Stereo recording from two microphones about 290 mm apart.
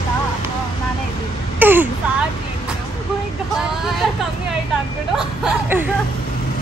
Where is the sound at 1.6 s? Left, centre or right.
Centre.